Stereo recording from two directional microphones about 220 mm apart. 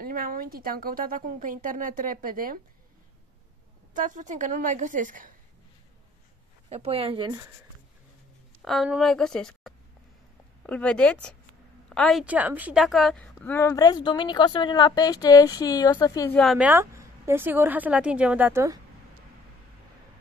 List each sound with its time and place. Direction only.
0.0 s speech: 40° right (ahead or behind)
3.9 s speech: 35° right (ahead or behind)
6.7 s speech: 30° right (ahead or behind)
8.6 s a woman's voice: centre (ahead or behind); by 16.3 s 15° left (ahead or behind)
16.3 s a woman's voice: centre (ahead or behind)